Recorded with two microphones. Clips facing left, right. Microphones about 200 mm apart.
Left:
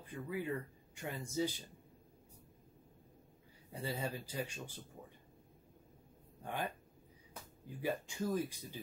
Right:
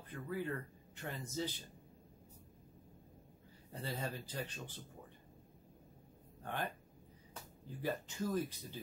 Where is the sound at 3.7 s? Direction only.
10° left (ahead or behind).